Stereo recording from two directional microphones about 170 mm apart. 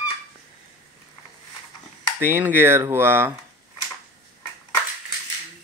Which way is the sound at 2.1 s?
15° right (ahead or behind).